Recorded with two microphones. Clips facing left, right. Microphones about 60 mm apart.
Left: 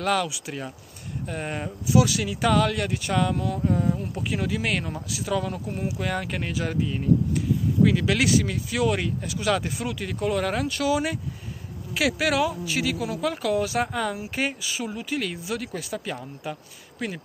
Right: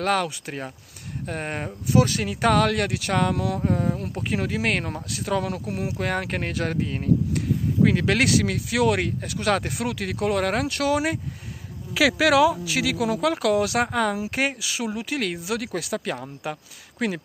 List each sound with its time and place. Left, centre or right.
0.0 s speech: right
3.3 s speech: right
3.6 s speech: right
5.5 s speech: right
5.9 s speech: right
12.4 s speech: right
13.9 s speech: right
17.0 s speech: right